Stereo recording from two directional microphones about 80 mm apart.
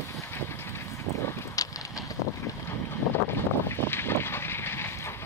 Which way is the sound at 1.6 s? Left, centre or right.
Left.